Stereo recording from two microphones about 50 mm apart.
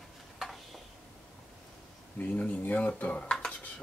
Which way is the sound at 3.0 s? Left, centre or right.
Left.